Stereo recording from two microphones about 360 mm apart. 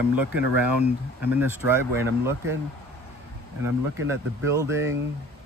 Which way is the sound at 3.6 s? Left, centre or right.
Centre.